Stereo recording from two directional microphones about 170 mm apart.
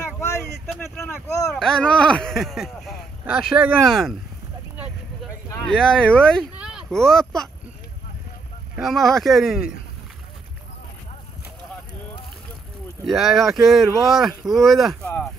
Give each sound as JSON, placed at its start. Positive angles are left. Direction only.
{"t": 1.5, "sound": "speech", "side_deg": 5}
{"t": 5.5, "sound": "speech", "side_deg": 5}
{"t": 6.6, "sound": "speech", "side_deg": -5}
{"t": 8.7, "sound": "speech", "side_deg": 0}
{"t": 13.0, "sound": "speech", "side_deg": 0}